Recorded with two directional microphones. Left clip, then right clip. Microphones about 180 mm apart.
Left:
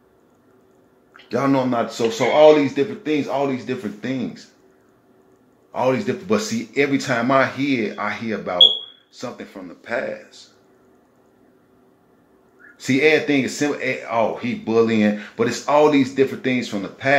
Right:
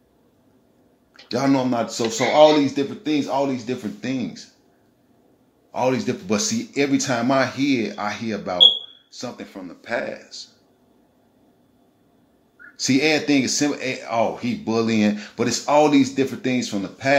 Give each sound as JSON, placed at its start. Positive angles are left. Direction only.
{"t": 1.3, "sound": "speech", "side_deg": -40}
{"t": 4.0, "sound": "speech", "side_deg": -35}
{"t": 5.7, "sound": "speech", "side_deg": -40}
{"t": 12.8, "sound": "speech", "side_deg": -45}